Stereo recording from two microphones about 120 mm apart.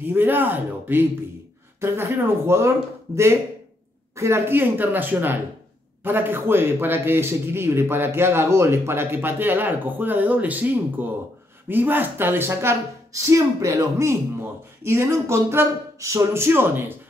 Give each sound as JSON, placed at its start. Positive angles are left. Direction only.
{"t": 0.0, "sound": "a man's voice", "side_deg": -15}